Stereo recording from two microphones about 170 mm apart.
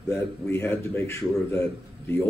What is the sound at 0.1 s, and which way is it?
A man's voice, 15° left (ahead or behind).